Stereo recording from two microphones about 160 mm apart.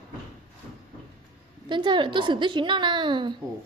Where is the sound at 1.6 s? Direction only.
30° right (ahead or behind).